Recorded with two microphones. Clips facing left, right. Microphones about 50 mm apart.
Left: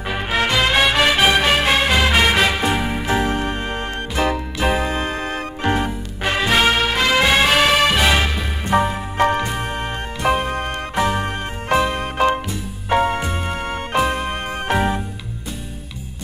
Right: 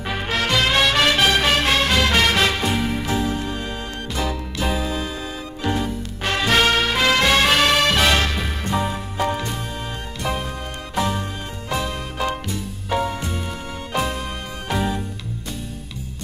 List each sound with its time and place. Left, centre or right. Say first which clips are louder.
0.1 s music: left 2 dB; centre
3.1 s music: left 4 dB; left
6.2 s music: left 2 dB; centre
8.7 s music: left 7 dB; left